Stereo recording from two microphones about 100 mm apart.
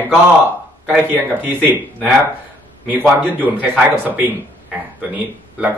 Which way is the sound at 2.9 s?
15° right (ahead or behind).